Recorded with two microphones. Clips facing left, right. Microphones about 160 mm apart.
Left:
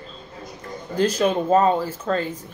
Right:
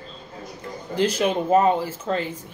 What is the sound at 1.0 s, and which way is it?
Speech, 15° right (ahead or behind).